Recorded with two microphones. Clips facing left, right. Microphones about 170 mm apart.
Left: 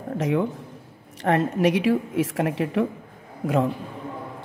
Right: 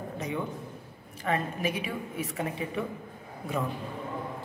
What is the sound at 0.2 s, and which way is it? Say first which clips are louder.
Speech: left 11 dB; 90° left.